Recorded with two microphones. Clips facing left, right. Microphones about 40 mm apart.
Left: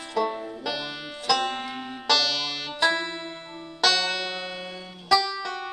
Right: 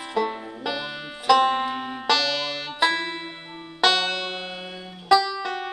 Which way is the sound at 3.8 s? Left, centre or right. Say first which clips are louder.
Right 2 dB; right.